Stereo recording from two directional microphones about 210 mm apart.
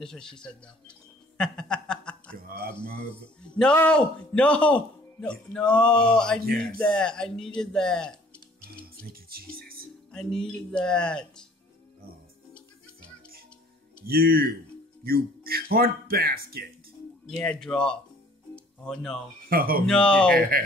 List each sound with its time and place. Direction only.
0.0 s a man's voice: 5° left (ahead or behind)
1.4 s a sound: 5° left (ahead or behind)
2.3 s speech: 45° right (ahead or behind)
3.5 s a man's voice: 5° left (ahead or behind)
8.8 s music: 45° right (ahead or behind)
10.1 s a man's voice: 5° left (ahead or behind)
14.0 s speech: 45° right (ahead or behind)
17.3 s a man's voice: 5° left (ahead or behind)
19.5 s speech: 45° right (ahead or behind)
19.9 s a man's voice: 5° left (ahead or behind)
20.3 s speech: 45° right (ahead or behind)